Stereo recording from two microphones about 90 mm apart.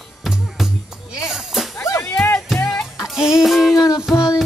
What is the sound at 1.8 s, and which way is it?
Music, 30° left (ahead or behind).